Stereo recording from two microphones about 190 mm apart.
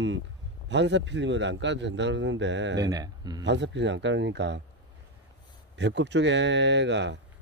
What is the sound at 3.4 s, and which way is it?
Speech, 70° right (ahead or behind).